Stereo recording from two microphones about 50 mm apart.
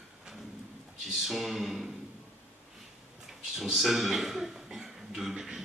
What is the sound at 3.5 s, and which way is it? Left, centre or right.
Speech, centre.